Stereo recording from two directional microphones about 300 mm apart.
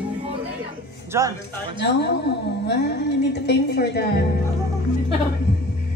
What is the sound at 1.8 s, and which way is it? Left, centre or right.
A woman's voice, left.